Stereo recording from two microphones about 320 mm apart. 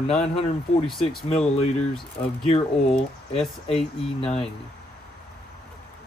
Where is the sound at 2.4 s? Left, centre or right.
Centre.